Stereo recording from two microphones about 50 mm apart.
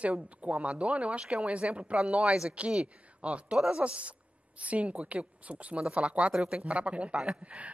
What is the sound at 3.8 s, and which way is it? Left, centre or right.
Speech, right.